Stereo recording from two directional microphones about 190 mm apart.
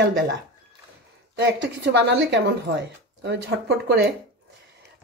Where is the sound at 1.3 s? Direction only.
70° right (ahead or behind).